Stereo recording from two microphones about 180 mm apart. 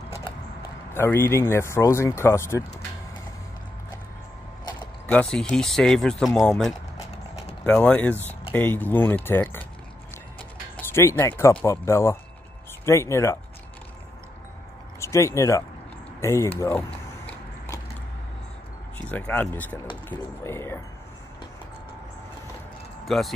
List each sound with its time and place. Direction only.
0.9 s speech: 15° left (ahead or behind)
5.1 s speech: 5° left (ahead or behind)
7.6 s speech: 5° left (ahead or behind)
10.8 s speech: 15° left (ahead or behind)
15.0 s speech: 15° left (ahead or behind)
19.0 s speech: 10° left (ahead or behind)
23.0 s speech: centre (ahead or behind)